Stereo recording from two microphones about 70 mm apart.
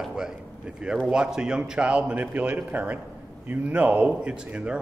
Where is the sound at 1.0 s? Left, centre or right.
Centre.